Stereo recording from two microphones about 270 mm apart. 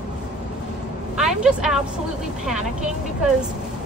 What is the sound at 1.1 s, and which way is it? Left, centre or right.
Speech, centre.